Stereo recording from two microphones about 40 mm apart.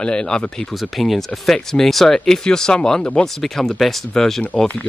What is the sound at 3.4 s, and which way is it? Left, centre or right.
Speech, centre.